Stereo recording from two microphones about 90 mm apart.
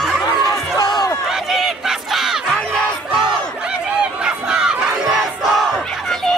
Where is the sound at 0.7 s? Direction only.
45° left (ahead or behind).